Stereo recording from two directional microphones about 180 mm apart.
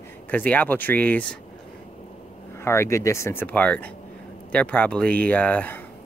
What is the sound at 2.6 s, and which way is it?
Speech, 15° left (ahead or behind).